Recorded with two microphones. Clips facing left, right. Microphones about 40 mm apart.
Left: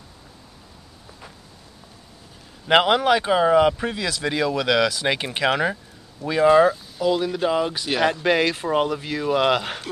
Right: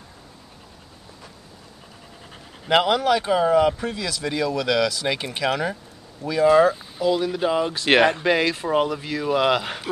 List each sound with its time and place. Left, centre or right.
2.7 s speech: left
7.1 s speech: centre